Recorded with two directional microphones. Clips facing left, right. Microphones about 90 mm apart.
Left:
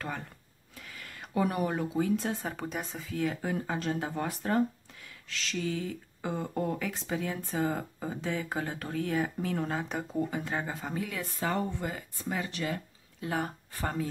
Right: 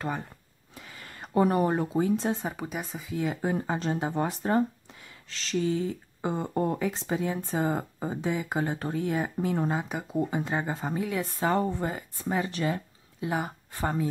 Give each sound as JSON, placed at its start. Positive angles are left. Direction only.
{"t": 0.7, "sound": "speech", "side_deg": -25}
{"t": 2.4, "sound": "speech", "side_deg": -5}
{"t": 3.1, "sound": "speech", "side_deg": -20}
{"t": 8.5, "sound": "speech", "side_deg": -30}
{"t": 9.8, "sound": "speech", "side_deg": -5}
{"t": 10.1, "sound": "speech", "side_deg": -20}
{"t": 13.2, "sound": "speech", "side_deg": -15}